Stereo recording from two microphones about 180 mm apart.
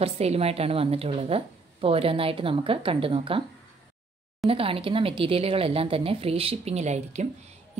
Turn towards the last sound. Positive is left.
turn(degrees=-40)  # may be behind; listen again after turning